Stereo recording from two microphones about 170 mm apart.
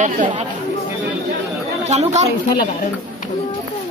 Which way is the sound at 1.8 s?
40° right (ahead or behind).